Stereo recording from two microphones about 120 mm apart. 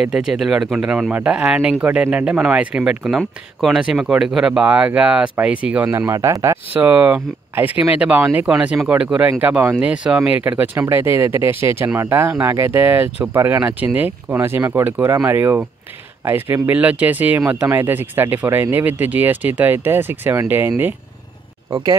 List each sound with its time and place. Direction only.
0.0 s speech: 5° right (ahead or behind)